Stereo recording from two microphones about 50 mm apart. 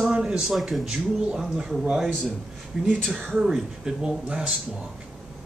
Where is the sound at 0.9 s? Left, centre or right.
Centre.